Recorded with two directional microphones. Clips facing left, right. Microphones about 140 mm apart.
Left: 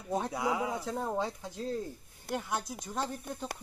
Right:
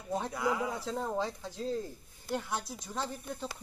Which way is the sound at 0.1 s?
15° left (ahead or behind).